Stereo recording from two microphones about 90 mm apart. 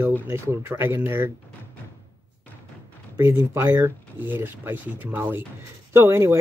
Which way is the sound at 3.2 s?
30° right (ahead or behind).